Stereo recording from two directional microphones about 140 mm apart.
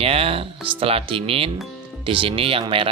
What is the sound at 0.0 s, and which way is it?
Speech, 45° right (ahead or behind).